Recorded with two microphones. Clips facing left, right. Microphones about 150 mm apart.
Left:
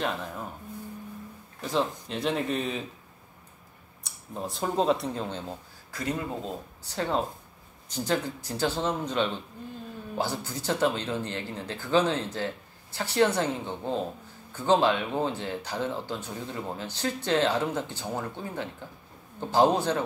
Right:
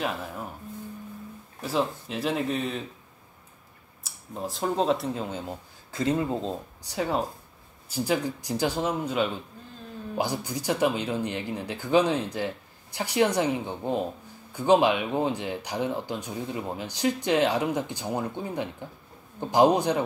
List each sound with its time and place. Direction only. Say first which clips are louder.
1.6 s speech: right 1 dB; 5° right (ahead or behind)
4.0 s speech: right 1 dB; centre (ahead or behind)
5.9 s speech: right 6 dB; 25° right (ahead or behind)
6.8 s speech: right 1 dB; 10° right (ahead or behind)